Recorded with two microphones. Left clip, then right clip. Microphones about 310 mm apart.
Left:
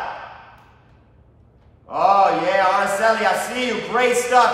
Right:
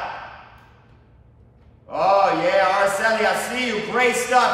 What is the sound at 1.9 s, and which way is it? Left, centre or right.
Speech, centre.